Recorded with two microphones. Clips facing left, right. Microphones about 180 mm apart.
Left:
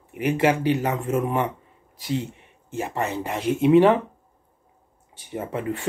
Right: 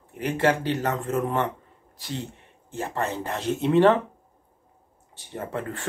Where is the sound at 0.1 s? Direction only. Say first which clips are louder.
Left 2 dB; 15° left (ahead or behind).